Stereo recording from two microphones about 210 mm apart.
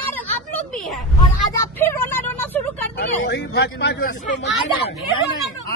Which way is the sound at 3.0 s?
50° left (ahead or behind).